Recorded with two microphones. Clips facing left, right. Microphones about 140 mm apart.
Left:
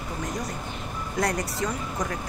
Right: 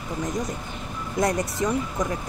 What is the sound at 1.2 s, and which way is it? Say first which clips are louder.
Speech: right 3 dB; 20° right (ahead or behind).